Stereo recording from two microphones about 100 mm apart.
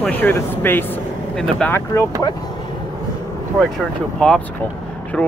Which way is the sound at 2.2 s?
40° left (ahead or behind).